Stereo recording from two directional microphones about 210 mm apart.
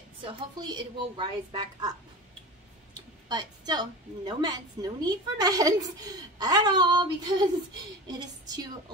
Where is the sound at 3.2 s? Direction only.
20° right (ahead or behind).